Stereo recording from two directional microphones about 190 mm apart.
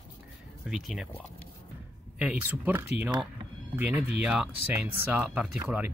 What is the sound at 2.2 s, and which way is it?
Speech, 10° right (ahead or behind).